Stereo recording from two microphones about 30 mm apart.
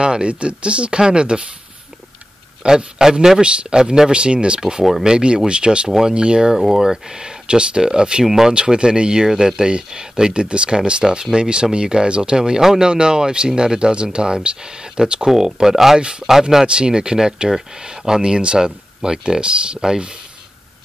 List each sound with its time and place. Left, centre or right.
0.0 s speech: right
2.6 s speech: centre; by 4.6 s right
4.6 s speech: right
5.9 s speech: centre
6.1 s speech: right
6.5 s speech: centre
7.4 s speech: right
8.2 s speech: centre
8.7 s speech: right
9.2 s speech: centre
9.6 s speech: right
15.3 s speech: centre
16.6 s speech: right